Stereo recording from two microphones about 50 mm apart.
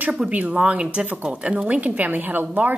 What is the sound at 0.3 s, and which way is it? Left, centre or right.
A woman's voice, right.